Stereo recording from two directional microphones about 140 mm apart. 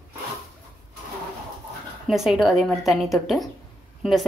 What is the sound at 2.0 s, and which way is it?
A woman's voice, 5° right (ahead or behind).